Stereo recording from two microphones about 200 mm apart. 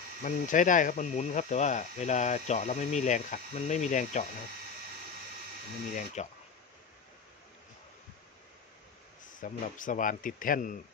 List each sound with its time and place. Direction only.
0.2 s speech: 40° left (ahead or behind)
6.2 s speech: 35° left (ahead or behind)
9.2 s speech: 40° left (ahead or behind)